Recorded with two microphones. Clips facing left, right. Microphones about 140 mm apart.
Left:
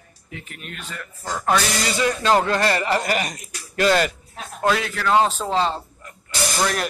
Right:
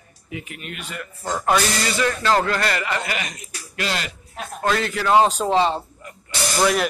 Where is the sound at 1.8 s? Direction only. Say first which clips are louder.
Left 1 dB; 15° left (ahead or behind); by 4.1 s 45° left (ahead or behind).